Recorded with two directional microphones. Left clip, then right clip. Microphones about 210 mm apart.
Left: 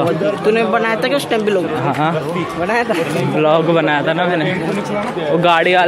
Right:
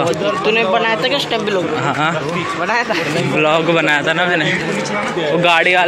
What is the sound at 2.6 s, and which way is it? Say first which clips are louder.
Speech: left 1 dB; 55° left (ahead or behind).